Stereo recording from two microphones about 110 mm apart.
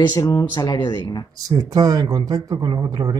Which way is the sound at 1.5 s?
35° right (ahead or behind).